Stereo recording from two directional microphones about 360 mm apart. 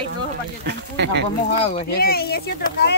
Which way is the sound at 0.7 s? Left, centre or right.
Right.